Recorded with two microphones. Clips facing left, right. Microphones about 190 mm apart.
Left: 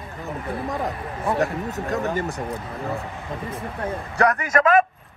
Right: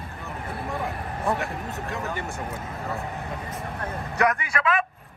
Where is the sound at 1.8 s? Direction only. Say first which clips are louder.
Left 8 dB; 40° left (ahead or behind).